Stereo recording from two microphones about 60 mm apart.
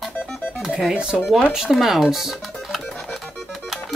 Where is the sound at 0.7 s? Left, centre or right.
Centre.